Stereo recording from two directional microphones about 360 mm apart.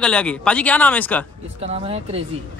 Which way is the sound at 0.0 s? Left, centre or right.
Centre.